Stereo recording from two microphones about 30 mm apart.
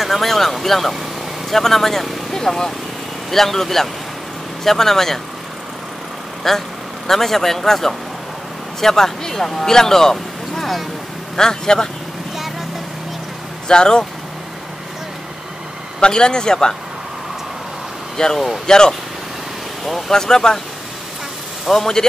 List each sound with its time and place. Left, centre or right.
0.0 s speech: centre
6.4 s speech: centre
13.7 s speech: left
16.0 s speech: left
18.1 s speech: centre
20.1 s speech: centre
21.7 s speech: centre